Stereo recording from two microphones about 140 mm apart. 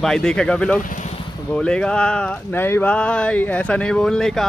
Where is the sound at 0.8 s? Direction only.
65° left (ahead or behind).